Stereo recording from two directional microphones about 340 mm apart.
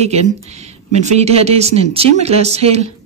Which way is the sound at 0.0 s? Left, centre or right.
Centre.